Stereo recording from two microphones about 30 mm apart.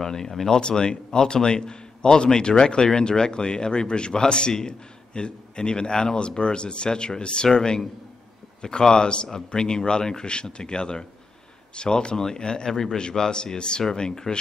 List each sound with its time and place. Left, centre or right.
0.0 s speech: centre
0.6 s a man's voice: left
12.2 s a man's voice: left